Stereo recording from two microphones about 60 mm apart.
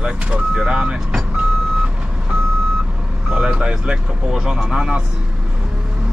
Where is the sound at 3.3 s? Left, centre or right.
Centre.